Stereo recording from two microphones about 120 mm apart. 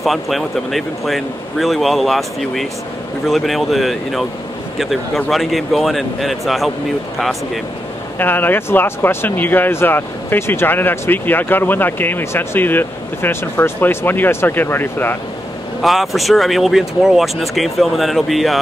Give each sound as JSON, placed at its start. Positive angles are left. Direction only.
{"t": 0.0, "sound": "speech", "side_deg": 0}
{"t": 8.2, "sound": "speech", "side_deg": 15}
{"t": 15.8, "sound": "speech", "side_deg": 0}